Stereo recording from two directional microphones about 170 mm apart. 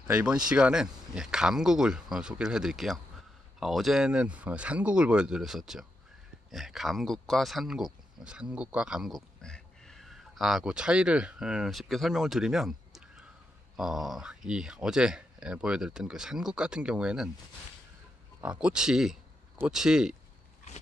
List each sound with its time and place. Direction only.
0.1 s speech: 5° right (ahead or behind)
18.4 s speech: 5° right (ahead or behind)